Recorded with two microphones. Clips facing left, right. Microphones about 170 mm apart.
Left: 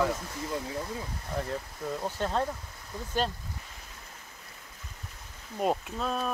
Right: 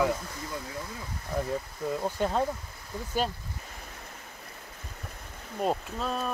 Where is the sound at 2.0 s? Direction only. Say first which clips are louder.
Right 2 dB; 10° right (ahead or behind).